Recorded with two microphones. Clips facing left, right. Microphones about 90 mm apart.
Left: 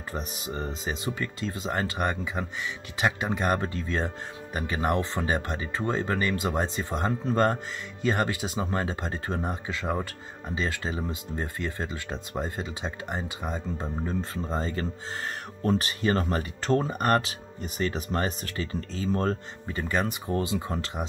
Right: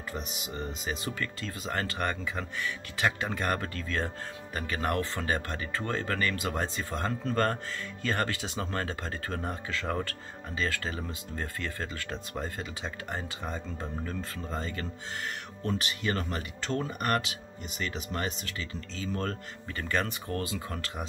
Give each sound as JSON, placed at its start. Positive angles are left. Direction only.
{"t": 0.1, "sound": "speech", "side_deg": 35}
{"t": 1.0, "sound": "speech", "side_deg": 20}
{"t": 19.7, "sound": "speech", "side_deg": 15}